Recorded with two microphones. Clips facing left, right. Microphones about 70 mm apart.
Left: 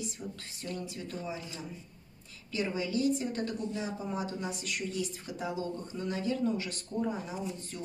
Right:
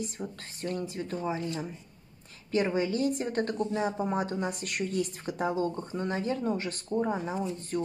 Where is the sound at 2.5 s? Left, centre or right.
Right.